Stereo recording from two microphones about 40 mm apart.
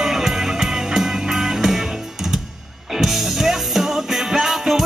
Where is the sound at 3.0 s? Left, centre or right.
Centre.